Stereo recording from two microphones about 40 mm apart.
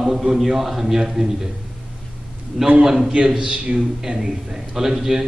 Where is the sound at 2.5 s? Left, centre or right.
Right.